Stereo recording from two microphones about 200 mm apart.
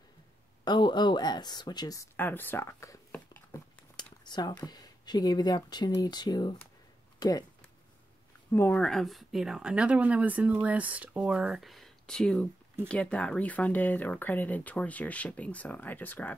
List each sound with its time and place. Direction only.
0.7 s speech: 20° left (ahead or behind)
8.5 s speech: 10° left (ahead or behind)